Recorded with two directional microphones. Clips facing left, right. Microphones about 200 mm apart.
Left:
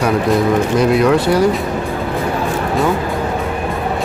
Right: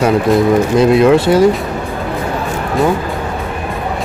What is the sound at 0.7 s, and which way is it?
Speech, 25° right (ahead or behind).